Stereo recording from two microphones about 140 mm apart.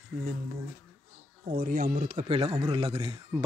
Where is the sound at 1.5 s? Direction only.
90° right; by 2.3 s 75° right (ahead or behind).